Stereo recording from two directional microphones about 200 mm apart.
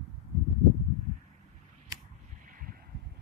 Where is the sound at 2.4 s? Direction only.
45° right (ahead or behind).